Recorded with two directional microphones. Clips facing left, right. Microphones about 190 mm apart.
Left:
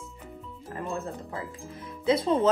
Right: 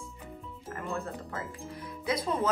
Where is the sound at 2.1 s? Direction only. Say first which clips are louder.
Left 7 dB; 30° left (ahead or behind).